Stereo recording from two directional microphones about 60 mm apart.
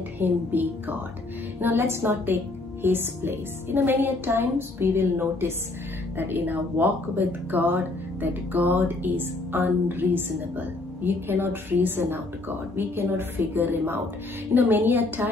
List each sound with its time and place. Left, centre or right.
0.2 s a woman's voice: right